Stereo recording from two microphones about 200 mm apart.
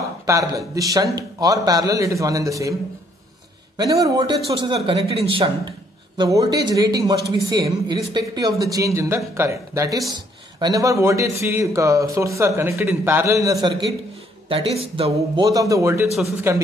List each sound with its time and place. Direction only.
0.3 s speech: 15° right (ahead or behind)
3.7 s speech: 20° right (ahead or behind)